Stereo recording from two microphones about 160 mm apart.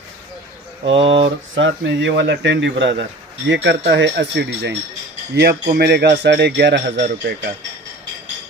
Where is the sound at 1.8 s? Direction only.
90° right.